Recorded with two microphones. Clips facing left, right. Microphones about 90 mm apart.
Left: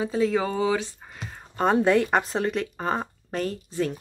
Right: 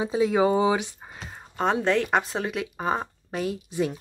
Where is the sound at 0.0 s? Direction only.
15° right (ahead or behind).